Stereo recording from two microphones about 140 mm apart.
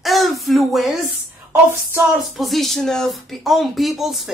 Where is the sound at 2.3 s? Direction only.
Centre (ahead or behind).